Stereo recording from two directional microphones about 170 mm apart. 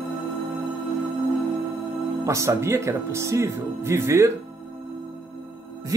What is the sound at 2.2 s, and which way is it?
Speech, 15° right (ahead or behind).